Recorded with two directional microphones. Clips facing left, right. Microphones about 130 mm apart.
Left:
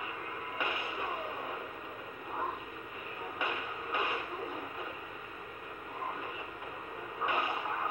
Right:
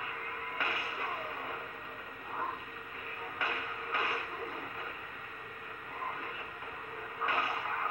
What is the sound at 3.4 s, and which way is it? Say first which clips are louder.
Train: left 1 dB; 20° left (ahead or behind).